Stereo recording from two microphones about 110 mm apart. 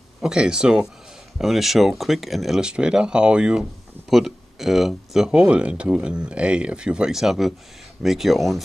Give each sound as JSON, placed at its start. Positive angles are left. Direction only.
{"t": 0.2, "sound": "speech", "side_deg": -5}